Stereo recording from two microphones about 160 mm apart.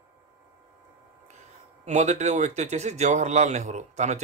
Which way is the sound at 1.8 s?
45° right (ahead or behind).